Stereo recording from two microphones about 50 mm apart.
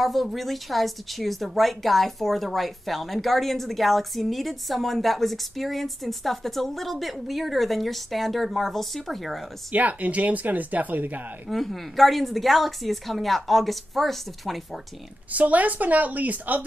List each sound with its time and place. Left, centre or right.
0.0 s speech: centre
9.7 s speech: right
11.5 s speech: centre
15.3 s speech: right